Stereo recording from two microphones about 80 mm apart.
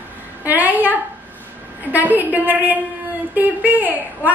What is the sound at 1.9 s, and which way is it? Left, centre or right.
A woman's voice, right.